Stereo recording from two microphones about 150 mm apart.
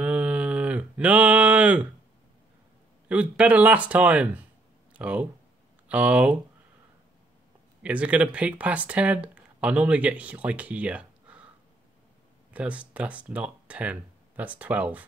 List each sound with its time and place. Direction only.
0.0 s a sound: 10° right (ahead or behind)
3.1 s speech: 10° right (ahead or behind)
7.8 s speech: 10° right (ahead or behind)
12.5 s speech: 10° right (ahead or behind)